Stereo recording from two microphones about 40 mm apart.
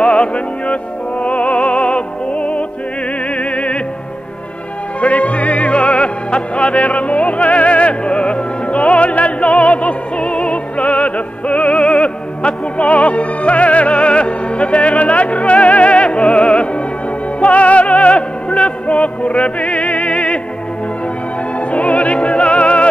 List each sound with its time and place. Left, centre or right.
0.0 s music: left
5.0 s music: left
21.7 s music: left